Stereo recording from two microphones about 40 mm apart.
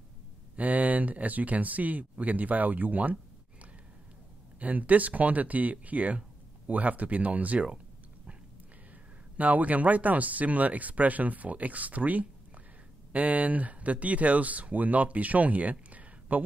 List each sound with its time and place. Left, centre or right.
0.6 s speech: right
4.6 s speech: right
9.4 s speech: right